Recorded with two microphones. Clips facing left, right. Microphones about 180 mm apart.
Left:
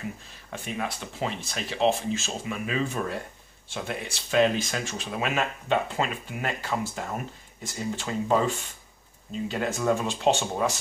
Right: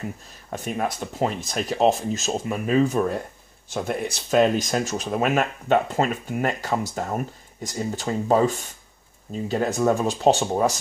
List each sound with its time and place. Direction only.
0.5 s speech: 45° right (ahead or behind)